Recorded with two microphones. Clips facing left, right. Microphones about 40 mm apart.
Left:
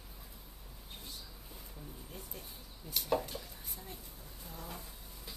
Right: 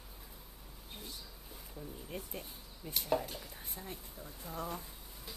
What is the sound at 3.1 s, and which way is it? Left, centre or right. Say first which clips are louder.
Speech: even; centre.